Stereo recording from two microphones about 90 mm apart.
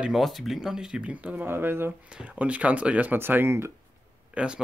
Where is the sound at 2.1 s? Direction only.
10° right (ahead or behind); by 3.7 s 25° right (ahead or behind).